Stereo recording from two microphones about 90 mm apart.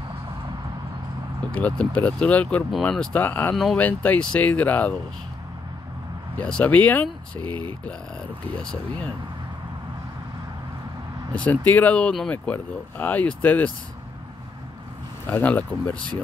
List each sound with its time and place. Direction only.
1.4 s speech: 10° left (ahead or behind)
3.2 s speech: 20° left (ahead or behind)
6.3 s speech: 15° left (ahead or behind)
11.3 s speech: 15° left (ahead or behind)
15.2 s speech: 20° left (ahead or behind)